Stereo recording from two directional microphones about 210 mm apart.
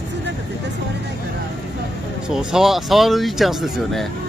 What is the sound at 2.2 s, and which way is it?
Speech, 5° right (ahead or behind).